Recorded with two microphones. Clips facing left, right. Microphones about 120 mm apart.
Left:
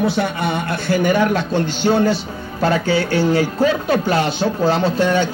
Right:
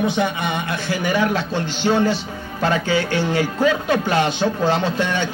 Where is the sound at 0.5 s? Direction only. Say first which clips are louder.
Left 4 dB; 50° left (ahead or behind).